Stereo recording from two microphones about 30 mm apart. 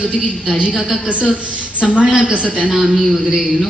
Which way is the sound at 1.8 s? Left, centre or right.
Right.